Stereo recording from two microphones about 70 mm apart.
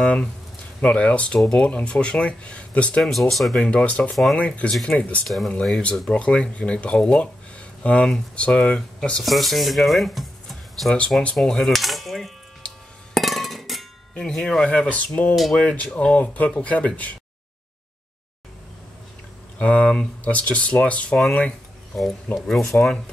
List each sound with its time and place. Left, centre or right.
0.0 s speech: centre
3.0 s speech: centre
3.8 s speech: left
4.1 s speech: centre
4.4 s speech: centre
9.2 s speech: centre
11.0 s a sound: centre
13.1 s music: centre
14.1 s speech: centre
14.9 s speech: left
19.6 s speech: centre
21.9 s speech: centre